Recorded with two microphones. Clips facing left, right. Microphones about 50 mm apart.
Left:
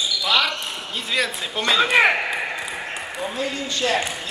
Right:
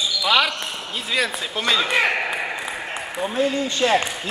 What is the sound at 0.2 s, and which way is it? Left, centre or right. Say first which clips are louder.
Basketball bounce: right 2 dB; centre.